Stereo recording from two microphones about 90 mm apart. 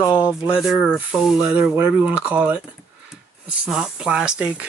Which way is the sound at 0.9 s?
15° right (ahead or behind).